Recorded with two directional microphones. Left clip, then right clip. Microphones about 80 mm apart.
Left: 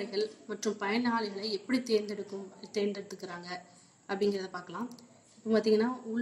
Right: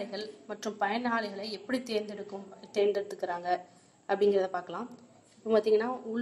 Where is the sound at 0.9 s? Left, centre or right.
Right.